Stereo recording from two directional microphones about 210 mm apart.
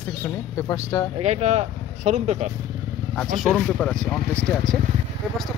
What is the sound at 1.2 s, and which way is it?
Speech, 30° right (ahead or behind).